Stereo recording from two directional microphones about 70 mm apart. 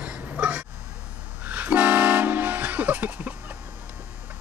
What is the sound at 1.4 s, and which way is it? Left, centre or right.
Toot, right.